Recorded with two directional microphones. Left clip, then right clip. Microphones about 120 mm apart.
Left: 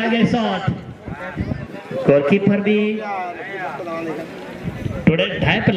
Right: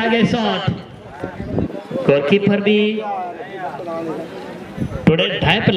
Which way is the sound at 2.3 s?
40° right (ahead or behind).